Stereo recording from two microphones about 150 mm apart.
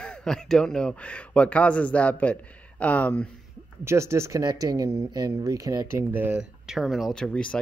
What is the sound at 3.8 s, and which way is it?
Speech, 20° right (ahead or behind).